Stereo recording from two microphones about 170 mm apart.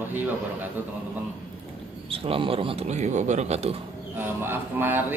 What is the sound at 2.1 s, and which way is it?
Speech, 35° right (ahead or behind).